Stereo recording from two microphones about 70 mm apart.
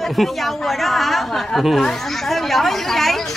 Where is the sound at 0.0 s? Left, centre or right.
Centre.